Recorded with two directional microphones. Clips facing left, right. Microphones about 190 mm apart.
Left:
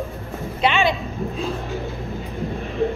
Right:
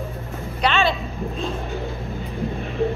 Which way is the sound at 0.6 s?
15° left (ahead or behind).